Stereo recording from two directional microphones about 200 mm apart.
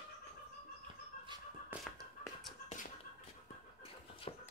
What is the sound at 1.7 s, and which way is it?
Tap, 10° right (ahead or behind).